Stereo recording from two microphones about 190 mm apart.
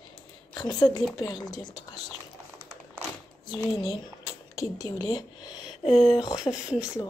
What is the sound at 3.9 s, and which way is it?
Speech, 20° left (ahead or behind).